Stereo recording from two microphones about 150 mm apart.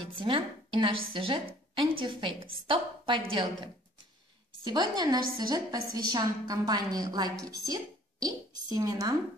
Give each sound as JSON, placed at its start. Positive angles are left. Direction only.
{"t": 0.2, "sound": "a woman's voice", "side_deg": -35}